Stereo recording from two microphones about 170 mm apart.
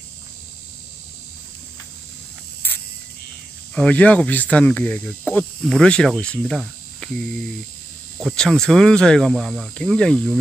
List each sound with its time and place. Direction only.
2.6 s cricket: 10° left (ahead or behind)
3.7 s speech: 5° left (ahead or behind)